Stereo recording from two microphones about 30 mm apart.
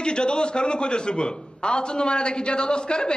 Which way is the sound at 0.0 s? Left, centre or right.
Left.